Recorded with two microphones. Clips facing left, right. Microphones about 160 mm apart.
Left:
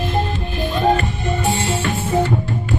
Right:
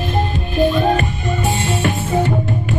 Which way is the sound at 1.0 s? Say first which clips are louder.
Right 1 dB; 20° right (ahead or behind).